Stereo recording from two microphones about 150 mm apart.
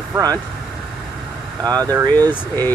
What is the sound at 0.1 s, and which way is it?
Speech, 25° right (ahead or behind).